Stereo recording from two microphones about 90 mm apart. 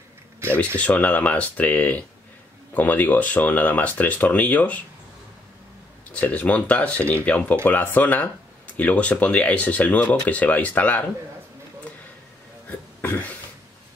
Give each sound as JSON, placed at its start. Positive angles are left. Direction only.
{"t": 0.7, "sound": "speech", "side_deg": 15}
{"t": 6.1, "sound": "speech", "side_deg": 15}
{"t": 12.6, "sound": "burping", "side_deg": 20}